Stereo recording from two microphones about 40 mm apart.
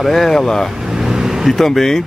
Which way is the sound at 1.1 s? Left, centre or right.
Centre.